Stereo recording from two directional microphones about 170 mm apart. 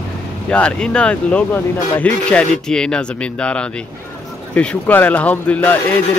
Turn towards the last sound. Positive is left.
turn(degrees=10)  # may be behind; listen again after turning